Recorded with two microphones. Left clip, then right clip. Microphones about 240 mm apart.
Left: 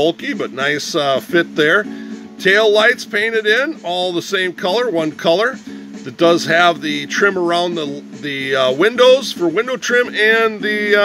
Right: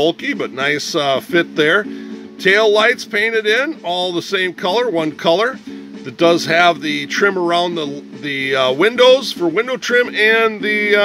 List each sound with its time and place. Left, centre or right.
0.0 s a man's voice: centre